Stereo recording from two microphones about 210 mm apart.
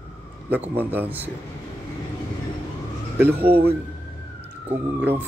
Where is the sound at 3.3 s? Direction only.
50° right (ahead or behind).